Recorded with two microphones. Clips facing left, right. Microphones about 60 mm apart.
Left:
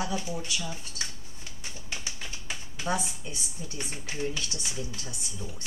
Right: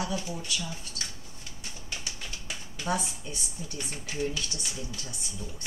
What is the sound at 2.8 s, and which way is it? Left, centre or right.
Speech, centre.